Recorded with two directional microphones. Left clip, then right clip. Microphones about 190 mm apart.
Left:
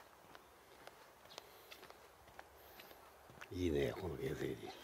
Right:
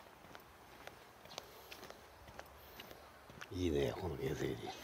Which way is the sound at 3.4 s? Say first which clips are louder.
Right 1 dB; 30° left (ahead or behind).